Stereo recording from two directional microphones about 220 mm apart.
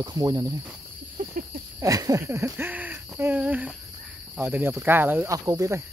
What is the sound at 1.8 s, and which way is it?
Speech, 15° right (ahead or behind).